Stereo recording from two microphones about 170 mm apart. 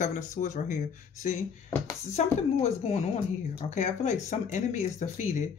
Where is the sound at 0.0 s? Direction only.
45° left (ahead or behind).